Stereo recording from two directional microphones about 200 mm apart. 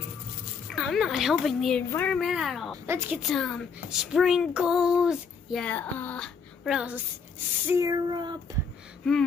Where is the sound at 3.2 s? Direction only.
Centre (ahead or behind).